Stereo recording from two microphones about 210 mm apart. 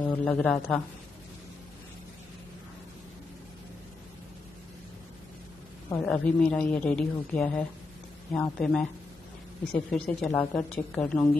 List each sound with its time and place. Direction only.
0.0 s a man's voice: 5° left (ahead or behind)
5.9 s a man's voice: 5° left (ahead or behind)